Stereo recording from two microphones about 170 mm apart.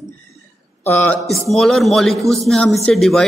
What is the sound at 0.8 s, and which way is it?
Speech, 10° left (ahead or behind).